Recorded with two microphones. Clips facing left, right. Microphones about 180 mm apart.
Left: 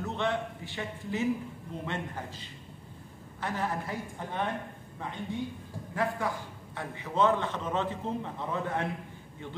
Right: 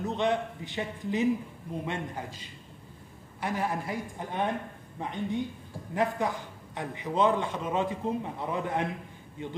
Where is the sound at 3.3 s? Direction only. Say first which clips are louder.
Right 2 dB; 10° right (ahead or behind).